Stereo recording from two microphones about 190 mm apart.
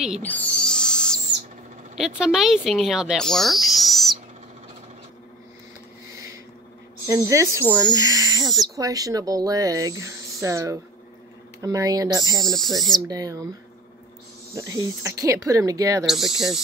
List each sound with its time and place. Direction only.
0.2 s owl: 5° left (ahead or behind)
2.0 s speech: 5° right (ahead or behind)
7.1 s speech: 15° right (ahead or behind)
12.4 s speech: centre (ahead or behind)
13.1 s speech: 20° right (ahead or behind)
14.8 s speech: 15° right (ahead or behind)
16.1 s speech: centre (ahead or behind)